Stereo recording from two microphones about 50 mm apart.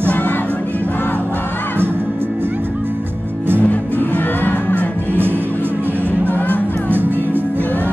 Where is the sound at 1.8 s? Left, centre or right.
Right.